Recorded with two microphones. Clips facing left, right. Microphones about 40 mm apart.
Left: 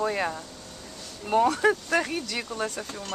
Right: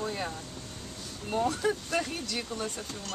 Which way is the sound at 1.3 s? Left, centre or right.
Left.